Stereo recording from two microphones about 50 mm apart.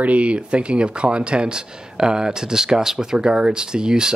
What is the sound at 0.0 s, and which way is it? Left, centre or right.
A man's voice, right.